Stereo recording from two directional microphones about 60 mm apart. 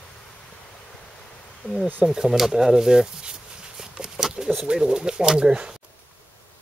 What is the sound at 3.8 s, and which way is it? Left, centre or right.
Pigeon, centre.